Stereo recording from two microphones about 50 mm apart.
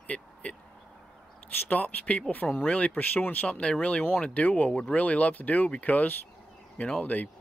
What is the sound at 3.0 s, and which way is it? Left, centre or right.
Speech, left.